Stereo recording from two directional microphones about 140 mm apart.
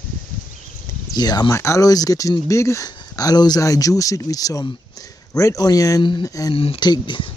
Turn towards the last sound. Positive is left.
turn(degrees=35)  # may be behind; listen again after turning